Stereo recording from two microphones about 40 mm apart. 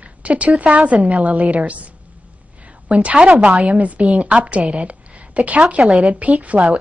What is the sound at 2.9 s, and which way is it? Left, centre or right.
A woman's voice, right.